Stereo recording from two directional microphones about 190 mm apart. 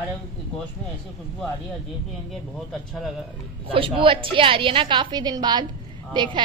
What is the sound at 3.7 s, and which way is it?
A woman's voice, 30° right (ahead or behind).